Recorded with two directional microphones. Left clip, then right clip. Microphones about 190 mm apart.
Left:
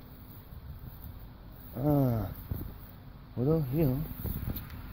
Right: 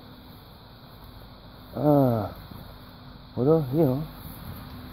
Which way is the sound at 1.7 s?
5° left (ahead or behind).